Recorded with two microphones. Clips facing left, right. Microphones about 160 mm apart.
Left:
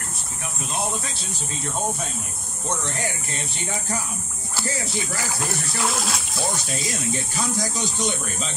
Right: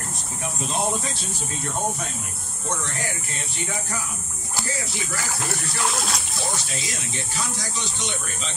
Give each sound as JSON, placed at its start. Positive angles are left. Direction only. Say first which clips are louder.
{"t": 5.9, "sound": "speech", "louder": "left 1 dB", "side_deg": 0}
{"t": 7.1, "sound": "speech", "louder": "left 5 dB", "side_deg": 45}